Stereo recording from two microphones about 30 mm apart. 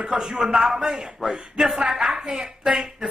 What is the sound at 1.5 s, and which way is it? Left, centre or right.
A man's voice, centre.